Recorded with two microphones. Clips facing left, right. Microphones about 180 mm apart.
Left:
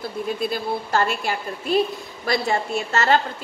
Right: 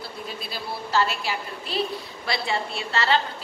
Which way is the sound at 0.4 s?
50° left (ahead or behind).